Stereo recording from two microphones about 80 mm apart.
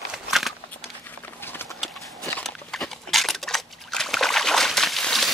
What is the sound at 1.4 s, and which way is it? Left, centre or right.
Clip-clop, left.